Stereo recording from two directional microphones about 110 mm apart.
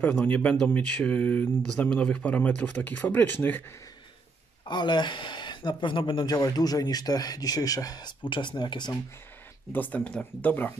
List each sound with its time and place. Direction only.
0.0 s speech: 15° left (ahead or behind)
4.6 s speech: 45° left (ahead or behind)
6.3 s speech: 35° left (ahead or behind)
8.3 s speech: 45° left (ahead or behind)
9.7 s speech: 15° left (ahead or behind)